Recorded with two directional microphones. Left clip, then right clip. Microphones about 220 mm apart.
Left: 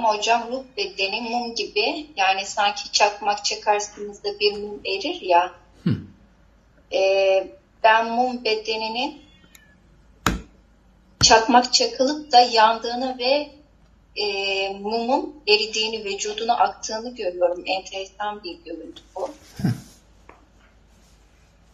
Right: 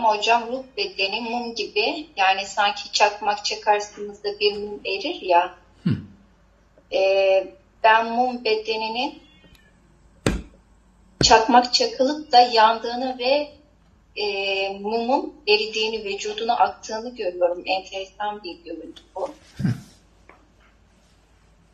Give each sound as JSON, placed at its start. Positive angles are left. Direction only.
{"t": 0.0, "sound": "a woman's voice", "side_deg": -5}
{"t": 5.8, "sound": "a sound", "side_deg": 30}
{"t": 6.9, "sound": "a woman's voice", "side_deg": 0}
{"t": 11.2, "sound": "a woman's voice", "side_deg": 0}